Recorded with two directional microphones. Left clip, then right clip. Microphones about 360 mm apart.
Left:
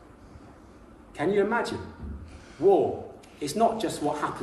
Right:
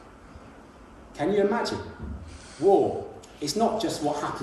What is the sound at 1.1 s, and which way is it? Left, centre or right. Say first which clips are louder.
Speech: right 1 dB; centre.